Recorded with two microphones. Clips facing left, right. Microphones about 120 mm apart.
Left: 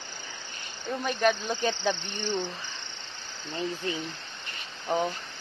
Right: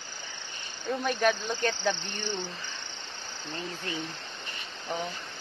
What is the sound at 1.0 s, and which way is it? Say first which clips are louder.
Speech: left 1 dB; centre (ahead or behind).